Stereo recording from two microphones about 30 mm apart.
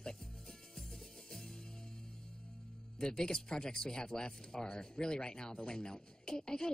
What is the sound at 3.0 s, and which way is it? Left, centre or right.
Speech, left.